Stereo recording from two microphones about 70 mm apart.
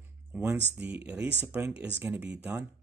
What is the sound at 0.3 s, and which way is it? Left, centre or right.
Speech, right.